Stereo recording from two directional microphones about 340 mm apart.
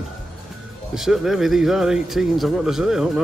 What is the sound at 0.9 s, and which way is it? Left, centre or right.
Speech, centre.